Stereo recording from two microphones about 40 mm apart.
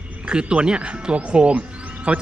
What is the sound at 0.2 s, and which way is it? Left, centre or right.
Speech, right.